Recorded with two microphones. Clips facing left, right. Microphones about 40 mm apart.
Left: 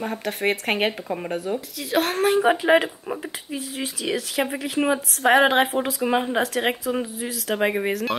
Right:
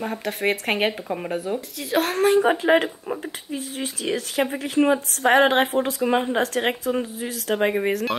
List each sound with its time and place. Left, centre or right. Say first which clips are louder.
0.0 s speech: even; centre